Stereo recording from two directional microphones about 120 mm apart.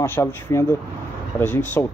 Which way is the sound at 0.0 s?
20° left (ahead or behind).